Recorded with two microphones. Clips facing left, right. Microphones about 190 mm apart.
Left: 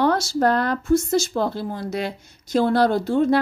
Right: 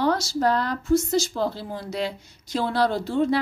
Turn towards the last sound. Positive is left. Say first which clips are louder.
# left 4 dB
turn(degrees=50)  # may be behind; listen again after turning